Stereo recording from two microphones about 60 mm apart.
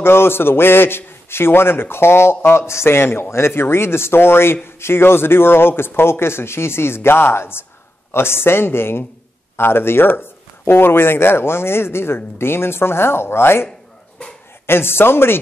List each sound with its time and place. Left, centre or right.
0.0 s a man's voice: left
14.7 s a man's voice: left